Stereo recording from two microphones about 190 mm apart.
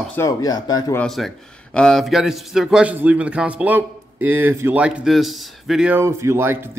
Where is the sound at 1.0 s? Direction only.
Centre (ahead or behind).